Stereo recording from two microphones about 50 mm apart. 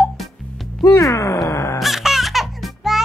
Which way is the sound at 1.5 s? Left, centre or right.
Left.